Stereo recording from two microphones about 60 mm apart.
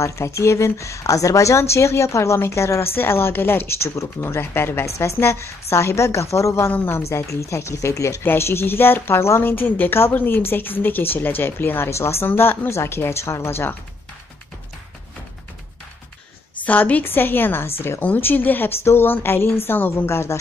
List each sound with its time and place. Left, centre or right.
0.0 s speech: left
4.2 s speech: left
4.9 s speech: left
8.2 s speech: left
16.5 s speech: left
18.0 s speech: left
20.1 s speech: left